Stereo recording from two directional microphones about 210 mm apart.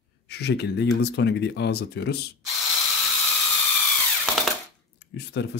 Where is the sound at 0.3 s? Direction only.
50° left (ahead or behind).